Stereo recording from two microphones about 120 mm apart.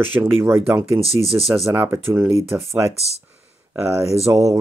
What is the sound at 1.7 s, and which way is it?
Speech, 15° right (ahead or behind).